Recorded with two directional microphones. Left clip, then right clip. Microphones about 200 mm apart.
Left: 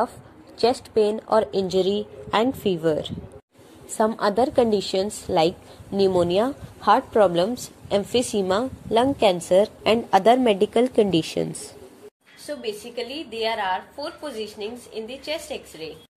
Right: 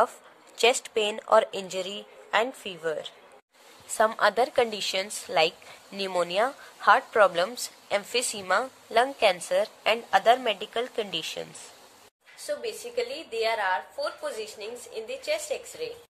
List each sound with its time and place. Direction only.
0.6 s a woman's voice: 15° right (ahead or behind)
2.3 s a woman's voice: centre (ahead or behind)
4.0 s a woman's voice: 15° right (ahead or behind); by 11.4 s 10° left (ahead or behind)
12.4 s a woman's voice: 15° right (ahead or behind)